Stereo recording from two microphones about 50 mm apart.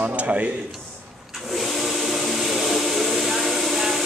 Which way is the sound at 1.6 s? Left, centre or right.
Centre.